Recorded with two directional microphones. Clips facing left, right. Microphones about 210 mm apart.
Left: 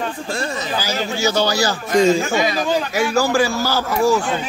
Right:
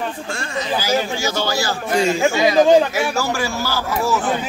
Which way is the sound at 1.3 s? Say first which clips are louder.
Left 5 dB; 15° left (ahead or behind).